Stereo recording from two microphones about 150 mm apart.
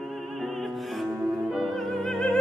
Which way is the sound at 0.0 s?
Centre (ahead or behind).